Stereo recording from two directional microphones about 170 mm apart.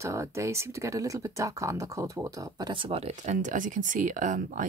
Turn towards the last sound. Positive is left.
turn(degrees=-50)  # may be behind; listen again after turning